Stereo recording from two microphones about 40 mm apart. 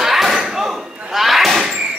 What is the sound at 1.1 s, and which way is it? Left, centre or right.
Slam, centre.